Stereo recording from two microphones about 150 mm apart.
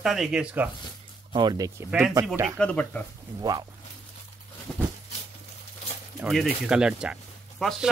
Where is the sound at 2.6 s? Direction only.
10° left (ahead or behind).